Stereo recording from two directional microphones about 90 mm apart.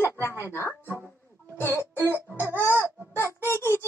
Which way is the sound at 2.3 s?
20° right (ahead or behind).